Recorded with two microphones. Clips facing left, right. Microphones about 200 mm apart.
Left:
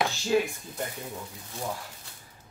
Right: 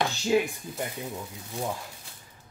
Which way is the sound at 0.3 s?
15° right (ahead or behind).